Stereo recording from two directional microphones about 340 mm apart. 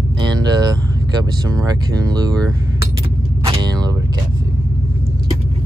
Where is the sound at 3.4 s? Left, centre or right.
Centre.